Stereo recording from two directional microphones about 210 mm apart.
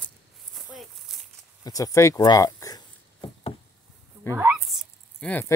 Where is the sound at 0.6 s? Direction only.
Centre (ahead or behind).